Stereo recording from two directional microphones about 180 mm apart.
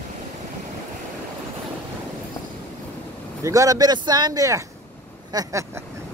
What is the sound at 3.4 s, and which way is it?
Speech, 20° right (ahead or behind).